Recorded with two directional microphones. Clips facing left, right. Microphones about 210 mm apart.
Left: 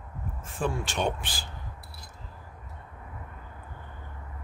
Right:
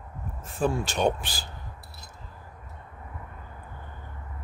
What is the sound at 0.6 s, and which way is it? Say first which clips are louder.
Speech: right 4 dB; 40° right (ahead or behind).